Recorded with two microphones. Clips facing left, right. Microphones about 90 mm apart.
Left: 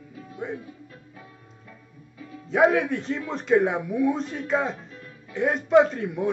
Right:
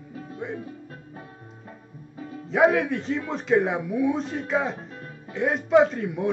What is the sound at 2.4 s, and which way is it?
A man's voice, centre (ahead or behind).